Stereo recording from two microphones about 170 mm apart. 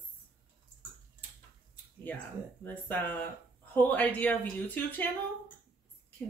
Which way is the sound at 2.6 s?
10° left (ahead or behind).